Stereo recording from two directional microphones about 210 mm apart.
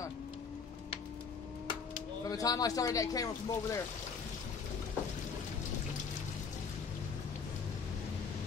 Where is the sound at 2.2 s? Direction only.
15° left (ahead or behind).